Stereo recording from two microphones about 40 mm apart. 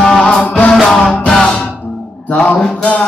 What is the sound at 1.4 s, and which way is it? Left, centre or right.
Music, left.